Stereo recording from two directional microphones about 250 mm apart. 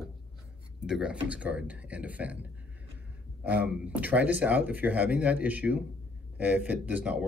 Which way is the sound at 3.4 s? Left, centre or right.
Centre.